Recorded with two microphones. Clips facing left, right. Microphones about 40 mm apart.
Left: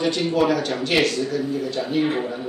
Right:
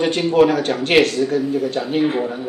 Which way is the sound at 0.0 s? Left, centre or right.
Right.